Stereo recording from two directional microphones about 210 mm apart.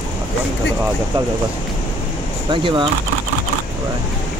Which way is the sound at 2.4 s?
20° right (ahead or behind).